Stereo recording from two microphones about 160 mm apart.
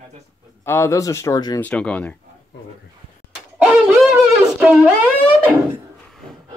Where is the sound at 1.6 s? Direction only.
5° left (ahead or behind).